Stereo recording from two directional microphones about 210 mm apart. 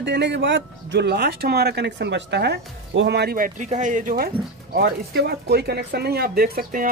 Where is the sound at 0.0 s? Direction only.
55° right (ahead or behind).